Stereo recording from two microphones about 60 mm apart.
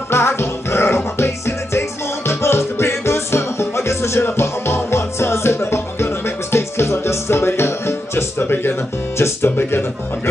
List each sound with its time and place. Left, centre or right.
0.1 s music: left
9.2 s speech: left